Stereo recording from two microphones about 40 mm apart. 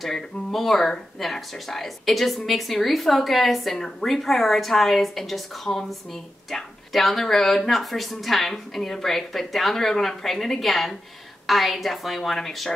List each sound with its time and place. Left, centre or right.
0.0 s speech: centre
5.7 s speech: left
6.5 s speech: centre